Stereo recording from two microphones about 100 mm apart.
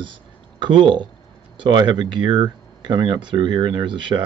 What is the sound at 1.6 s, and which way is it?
Speech, 50° right (ahead or behind).